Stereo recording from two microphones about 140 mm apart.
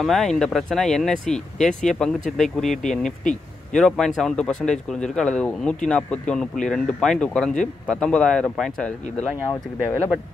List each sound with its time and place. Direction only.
0.0 s speech: centre (ahead or behind)